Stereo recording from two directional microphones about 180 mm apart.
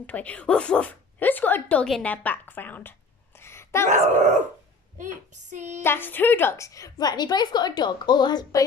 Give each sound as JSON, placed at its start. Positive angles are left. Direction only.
{"t": 0.0, "sound": "speech", "side_deg": 10}
{"t": 4.2, "sound": "dog", "side_deg": -40}
{"t": 4.9, "sound": "child singing", "side_deg": -45}
{"t": 5.8, "sound": "a woman's voice", "side_deg": 10}